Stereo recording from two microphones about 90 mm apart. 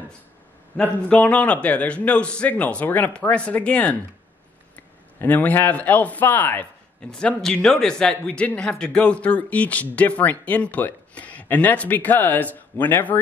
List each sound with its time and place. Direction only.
0.7 s a man's voice: 15° left (ahead or behind)
5.2 s a man's voice: 20° left (ahead or behind)
7.1 s a man's voice: 5° left (ahead or behind)